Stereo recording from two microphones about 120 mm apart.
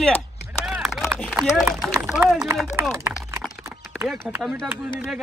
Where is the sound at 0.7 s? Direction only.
5° right (ahead or behind).